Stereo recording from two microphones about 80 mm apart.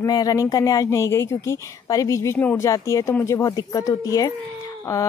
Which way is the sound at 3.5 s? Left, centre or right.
Left.